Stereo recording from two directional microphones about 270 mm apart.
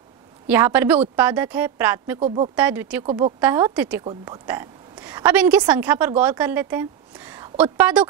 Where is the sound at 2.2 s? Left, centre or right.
Right.